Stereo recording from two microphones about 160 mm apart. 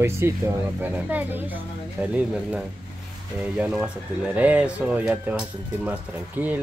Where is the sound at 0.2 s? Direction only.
15° right (ahead or behind).